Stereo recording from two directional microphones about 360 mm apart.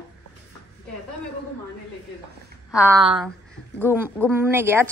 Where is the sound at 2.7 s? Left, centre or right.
Centre.